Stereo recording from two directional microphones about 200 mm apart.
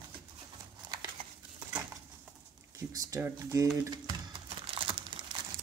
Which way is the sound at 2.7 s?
15° right (ahead or behind).